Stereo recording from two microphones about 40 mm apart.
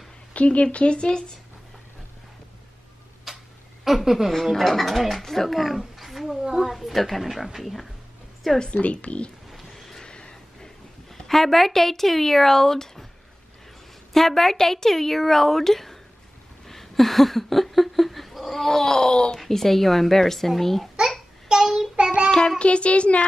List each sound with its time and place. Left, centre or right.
0.3 s speech: left
3.3 s tick-tock: centre
3.8 s a woman's voice: centre
4.3 s a child's voice: centre
8.5 s a woman's voice: left
9.5 s a sound: centre
9.9 s a sound: left
11.1 s speech: centre
14.1 s speech: centre
16.6 s a sound: centre
19.3 s a child's voice: centre
21.5 s child singing: centre
22.0 s child singing: right
22.6 s speech: left